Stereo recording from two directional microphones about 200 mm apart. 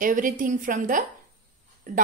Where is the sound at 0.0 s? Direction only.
40° right (ahead or behind).